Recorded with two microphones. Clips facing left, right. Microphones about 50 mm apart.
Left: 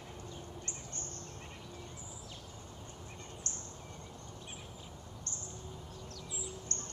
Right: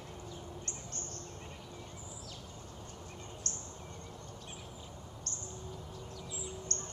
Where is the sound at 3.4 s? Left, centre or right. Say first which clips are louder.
Right 2 dB; left.